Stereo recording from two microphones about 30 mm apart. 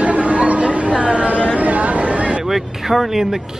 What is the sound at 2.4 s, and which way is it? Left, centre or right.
Speech, centre.